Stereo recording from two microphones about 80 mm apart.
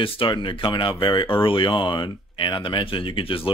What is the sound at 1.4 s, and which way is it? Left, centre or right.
Speech, left.